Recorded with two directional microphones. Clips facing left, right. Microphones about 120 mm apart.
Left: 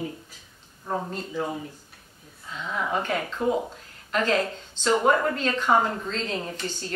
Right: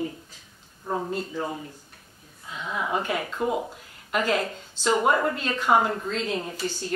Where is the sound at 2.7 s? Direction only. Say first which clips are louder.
Even; 10° right (ahead or behind).